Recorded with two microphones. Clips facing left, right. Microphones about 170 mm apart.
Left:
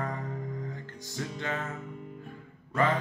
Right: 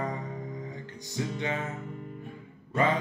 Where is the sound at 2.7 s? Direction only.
15° right (ahead or behind).